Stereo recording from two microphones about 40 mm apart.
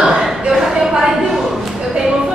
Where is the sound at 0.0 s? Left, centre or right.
Centre.